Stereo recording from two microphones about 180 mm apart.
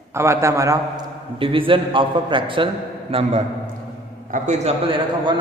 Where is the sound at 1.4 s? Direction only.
30° right (ahead or behind).